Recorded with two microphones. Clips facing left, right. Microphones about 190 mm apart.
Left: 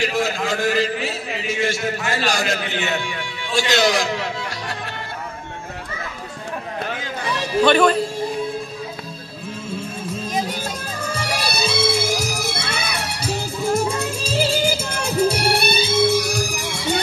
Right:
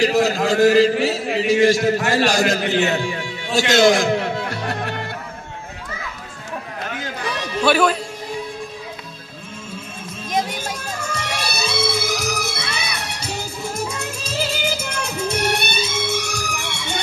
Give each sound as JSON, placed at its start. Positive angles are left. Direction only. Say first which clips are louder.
{"t": 0.0, "sound": "a man's voice", "louder": "right 5 dB", "side_deg": -40}
{"t": 2.0, "sound": "a man's voice", "louder": "right 5 dB", "side_deg": -50}
{"t": 7.6, "sound": "speech", "louder": "left 2 dB", "side_deg": -5}
{"t": 11.1, "sound": "music", "louder": "left 3 dB", "side_deg": 30}